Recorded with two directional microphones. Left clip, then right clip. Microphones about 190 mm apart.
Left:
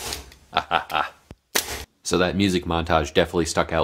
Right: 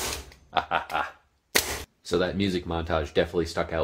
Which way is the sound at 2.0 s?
30° left (ahead or behind).